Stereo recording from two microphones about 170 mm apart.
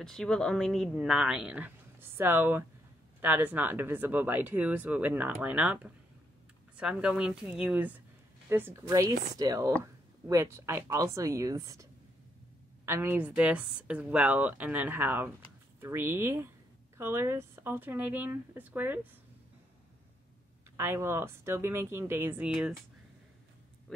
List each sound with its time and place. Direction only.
0.0 s speech: 5° left (ahead or behind); by 11.8 s 20° right (ahead or behind)
12.8 s speech: 15° right (ahead or behind)
20.7 s speech: 15° right (ahead or behind)